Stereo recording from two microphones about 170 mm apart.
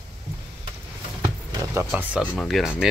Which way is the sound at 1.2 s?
20° right (ahead or behind).